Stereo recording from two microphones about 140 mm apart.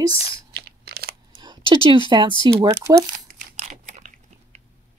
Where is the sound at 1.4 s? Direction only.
35° right (ahead or behind).